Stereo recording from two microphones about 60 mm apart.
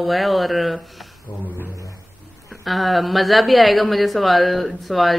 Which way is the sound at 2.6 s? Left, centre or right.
Centre.